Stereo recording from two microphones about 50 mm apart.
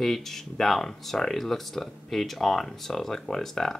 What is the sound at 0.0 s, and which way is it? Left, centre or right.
Speech, centre.